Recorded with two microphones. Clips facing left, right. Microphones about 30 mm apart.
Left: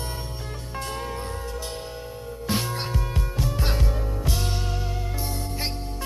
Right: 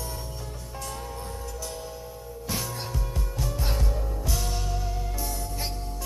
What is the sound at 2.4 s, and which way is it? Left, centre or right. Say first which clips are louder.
Music: left 6 dB; left.